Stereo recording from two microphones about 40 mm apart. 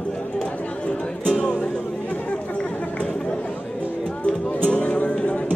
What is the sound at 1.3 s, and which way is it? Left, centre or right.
Music, left.